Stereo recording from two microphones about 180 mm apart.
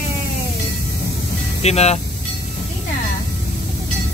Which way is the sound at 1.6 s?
35° left (ahead or behind).